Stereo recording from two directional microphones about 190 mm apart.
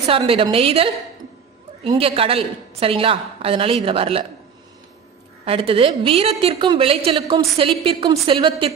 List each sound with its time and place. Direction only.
0.0 s a woman's voice: 30° right (ahead or behind)
5.4 s a woman's voice: 30° right (ahead or behind)